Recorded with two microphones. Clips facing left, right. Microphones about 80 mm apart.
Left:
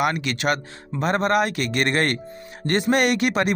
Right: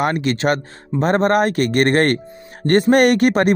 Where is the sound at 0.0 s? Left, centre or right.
Right.